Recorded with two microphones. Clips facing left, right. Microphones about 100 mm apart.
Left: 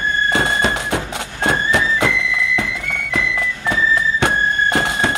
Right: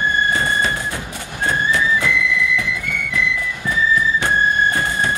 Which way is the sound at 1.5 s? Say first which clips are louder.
Left 1 dB; 70° left (ahead or behind).